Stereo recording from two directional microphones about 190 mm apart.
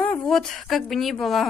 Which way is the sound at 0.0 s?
5° left (ahead or behind).